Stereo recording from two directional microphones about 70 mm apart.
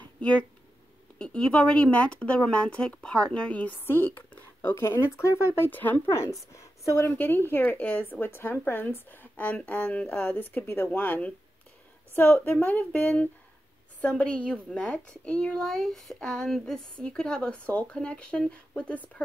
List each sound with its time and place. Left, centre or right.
0.2 s speech: centre
3.8 s speech: left
4.9 s speech: left
5.7 s a woman's voice: left
6.9 s speech: left
7.2 s a woman's voice: left
8.0 s a woman's voice: left